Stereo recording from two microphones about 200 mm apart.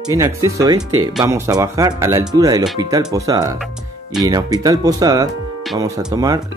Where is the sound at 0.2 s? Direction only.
15° right (ahead or behind).